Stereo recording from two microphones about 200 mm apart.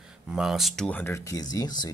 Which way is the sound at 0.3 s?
Centre (ahead or behind).